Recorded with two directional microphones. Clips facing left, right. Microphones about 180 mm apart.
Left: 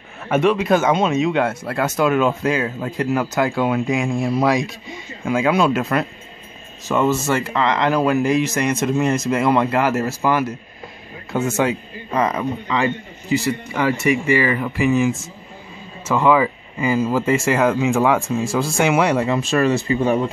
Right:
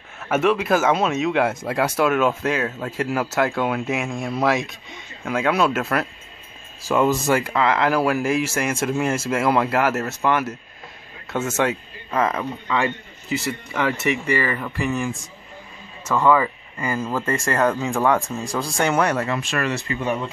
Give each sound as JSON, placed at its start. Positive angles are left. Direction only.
{"t": 0.3, "sound": "a man's voice", "side_deg": -5}
{"t": 19.9, "sound": "speech", "side_deg": 30}